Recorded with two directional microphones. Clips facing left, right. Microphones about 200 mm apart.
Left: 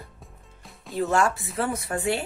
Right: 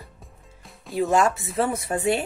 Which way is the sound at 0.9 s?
20° right (ahead or behind).